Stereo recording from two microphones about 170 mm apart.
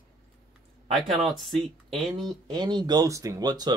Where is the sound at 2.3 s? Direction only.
25° right (ahead or behind).